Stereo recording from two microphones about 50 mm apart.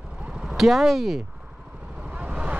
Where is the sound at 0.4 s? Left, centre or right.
Centre.